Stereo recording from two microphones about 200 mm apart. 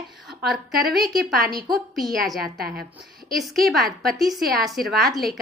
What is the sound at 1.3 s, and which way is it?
Speech, 45° right (ahead or behind).